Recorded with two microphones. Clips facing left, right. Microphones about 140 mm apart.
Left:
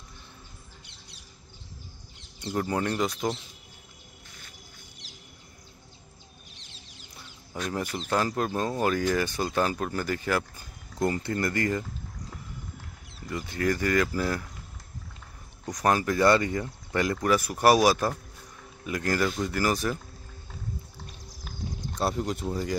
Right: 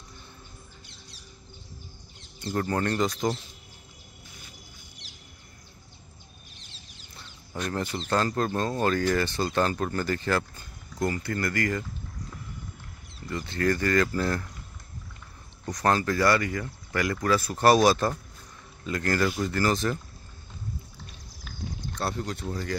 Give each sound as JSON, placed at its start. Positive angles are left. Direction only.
{"t": 2.5, "sound": "speech", "side_deg": 10}
{"t": 7.5, "sound": "speech", "side_deg": 5}
{"t": 11.0, "sound": "speech", "side_deg": 25}
{"t": 13.3, "sound": "speech", "side_deg": 10}
{"t": 15.6, "sound": "speech", "side_deg": 15}
{"t": 22.0, "sound": "speech", "side_deg": 10}